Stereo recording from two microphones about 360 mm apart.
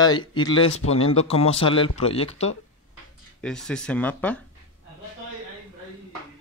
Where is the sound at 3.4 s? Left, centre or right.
Centre.